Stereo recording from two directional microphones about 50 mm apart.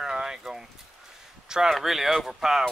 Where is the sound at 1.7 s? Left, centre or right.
Centre.